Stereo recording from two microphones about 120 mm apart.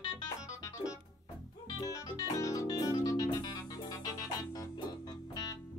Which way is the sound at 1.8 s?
30° left (ahead or behind).